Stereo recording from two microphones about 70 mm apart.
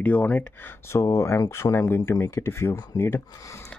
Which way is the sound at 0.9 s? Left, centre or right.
Left.